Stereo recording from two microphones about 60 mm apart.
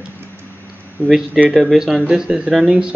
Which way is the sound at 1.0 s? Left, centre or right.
Left.